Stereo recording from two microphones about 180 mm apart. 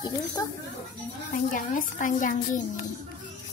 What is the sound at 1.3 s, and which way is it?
A woman's voice, 45° left (ahead or behind).